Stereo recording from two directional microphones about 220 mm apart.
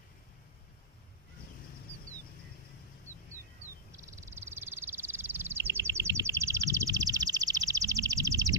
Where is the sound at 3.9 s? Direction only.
15° right (ahead or behind).